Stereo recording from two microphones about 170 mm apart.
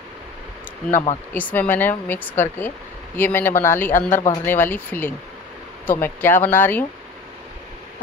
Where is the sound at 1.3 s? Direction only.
10° left (ahead or behind).